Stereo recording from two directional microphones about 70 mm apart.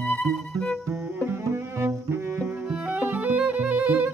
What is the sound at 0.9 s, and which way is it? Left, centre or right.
Music, right.